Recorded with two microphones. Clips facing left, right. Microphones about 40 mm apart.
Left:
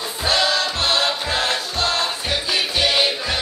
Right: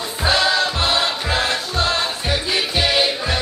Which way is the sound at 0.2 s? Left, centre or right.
Centre.